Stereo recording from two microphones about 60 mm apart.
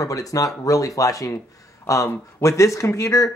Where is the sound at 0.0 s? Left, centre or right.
Left.